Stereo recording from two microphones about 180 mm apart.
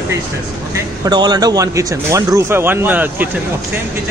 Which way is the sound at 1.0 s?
25° right (ahead or behind).